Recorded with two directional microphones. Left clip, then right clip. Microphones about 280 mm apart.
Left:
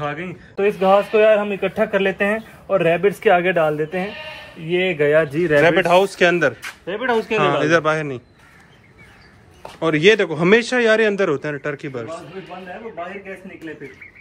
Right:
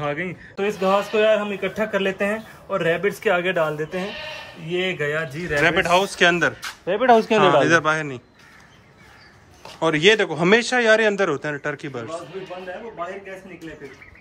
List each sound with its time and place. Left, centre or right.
0.3 s a man's voice: centre
6.9 s speech: right
7.4 s a man's voice: centre
9.8 s a man's voice: centre